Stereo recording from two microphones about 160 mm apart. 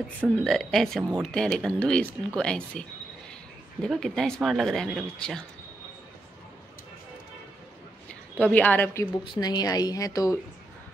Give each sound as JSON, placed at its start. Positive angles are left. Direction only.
{"t": 0.2, "sound": "speech", "side_deg": 5}
{"t": 8.1, "sound": "a woman's voice", "side_deg": 10}
{"t": 9.2, "sound": "a woman's voice", "side_deg": 30}